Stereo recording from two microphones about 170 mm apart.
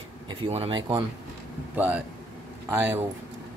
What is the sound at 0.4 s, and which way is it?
Speech, 35° right (ahead or behind).